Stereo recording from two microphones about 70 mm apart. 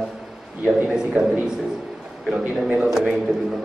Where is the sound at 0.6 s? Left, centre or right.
Right.